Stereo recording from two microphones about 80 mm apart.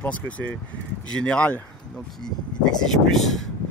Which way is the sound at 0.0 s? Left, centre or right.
Centre.